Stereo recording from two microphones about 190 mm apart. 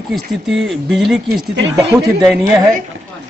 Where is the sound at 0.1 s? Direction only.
Centre (ahead or behind).